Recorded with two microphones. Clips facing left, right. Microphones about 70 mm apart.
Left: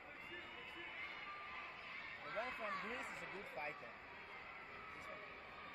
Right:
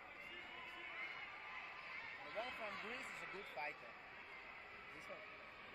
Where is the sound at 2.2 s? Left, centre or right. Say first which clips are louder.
Left 3 dB; left.